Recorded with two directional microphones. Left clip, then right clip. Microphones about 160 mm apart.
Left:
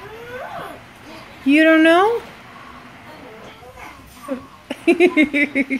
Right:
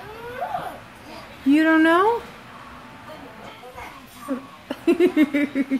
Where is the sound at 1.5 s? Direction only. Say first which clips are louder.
Left 5 dB; centre (ahead or behind).